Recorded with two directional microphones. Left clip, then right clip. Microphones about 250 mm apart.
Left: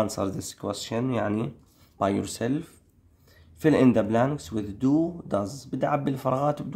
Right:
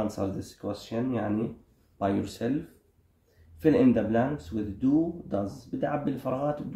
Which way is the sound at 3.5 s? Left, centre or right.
Left.